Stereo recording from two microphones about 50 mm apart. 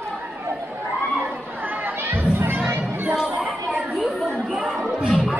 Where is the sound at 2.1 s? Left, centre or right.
Right.